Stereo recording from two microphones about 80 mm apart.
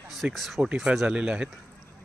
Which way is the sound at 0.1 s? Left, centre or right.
Centre.